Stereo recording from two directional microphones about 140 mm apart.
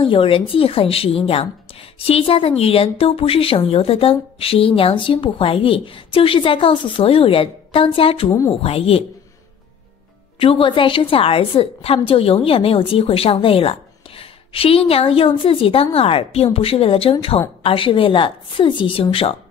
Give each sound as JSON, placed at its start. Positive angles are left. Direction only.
{"t": 0.0, "sound": "a woman's voice", "side_deg": 40}
{"t": 8.3, "sound": "a woman's voice", "side_deg": 20}
{"t": 8.6, "sound": "a woman's voice", "side_deg": 45}
{"t": 10.4, "sound": "a woman's voice", "side_deg": 40}